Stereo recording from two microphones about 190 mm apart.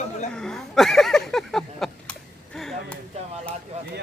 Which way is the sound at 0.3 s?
5° left (ahead or behind).